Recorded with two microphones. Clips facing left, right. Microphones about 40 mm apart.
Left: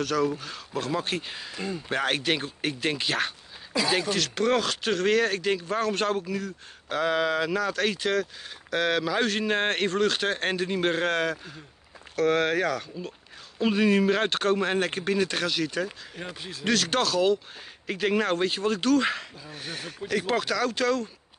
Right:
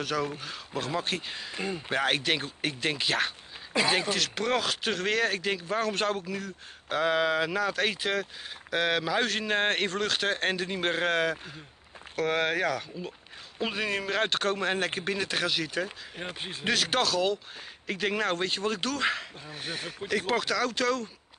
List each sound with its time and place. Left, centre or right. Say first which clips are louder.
0.0 s speech: left 5 dB; centre
1.5 s speech: even; centre
1.9 s speech: left 1 dB; centre
3.8 s speech: right 1 dB; right
4.1 s speech: left 3 dB; centre
16.3 s speech: right 3 dB; right
16.6 s speech: left 2 dB; centre